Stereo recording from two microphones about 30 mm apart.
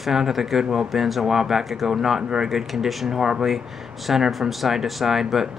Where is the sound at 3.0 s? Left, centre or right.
Centre.